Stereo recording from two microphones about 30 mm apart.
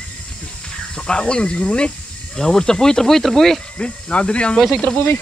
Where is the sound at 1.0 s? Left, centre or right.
Left.